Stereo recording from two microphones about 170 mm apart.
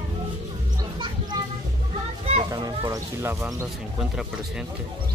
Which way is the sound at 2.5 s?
20° right (ahead or behind).